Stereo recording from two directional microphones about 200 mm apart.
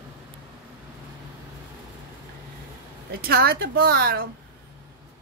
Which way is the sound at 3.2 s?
50° right (ahead or behind).